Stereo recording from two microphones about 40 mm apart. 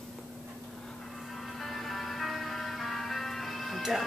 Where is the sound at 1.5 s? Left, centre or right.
Centre.